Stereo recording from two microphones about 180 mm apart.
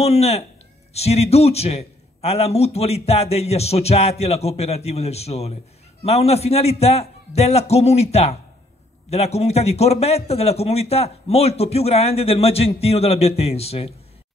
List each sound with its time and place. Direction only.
0.0 s a man's voice: 35° left (ahead or behind)